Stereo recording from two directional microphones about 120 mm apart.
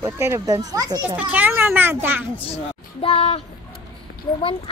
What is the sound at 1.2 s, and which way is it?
Speech, 15° right (ahead or behind).